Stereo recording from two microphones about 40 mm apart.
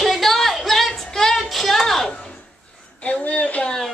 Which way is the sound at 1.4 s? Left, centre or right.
Centre.